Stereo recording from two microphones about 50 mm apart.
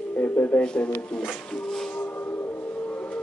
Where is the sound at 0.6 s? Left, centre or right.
Centre.